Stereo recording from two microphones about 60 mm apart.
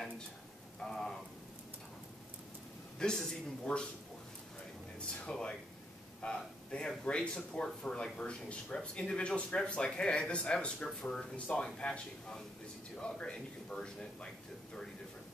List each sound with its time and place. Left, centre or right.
0.7 s a sound: centre
3.0 s a man's voice: centre
5.2 s a man's voice: centre